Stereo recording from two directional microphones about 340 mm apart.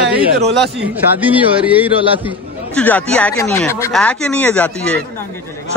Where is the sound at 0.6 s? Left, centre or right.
Centre.